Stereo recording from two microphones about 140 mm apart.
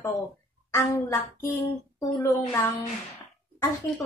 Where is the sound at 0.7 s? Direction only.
20° left (ahead or behind).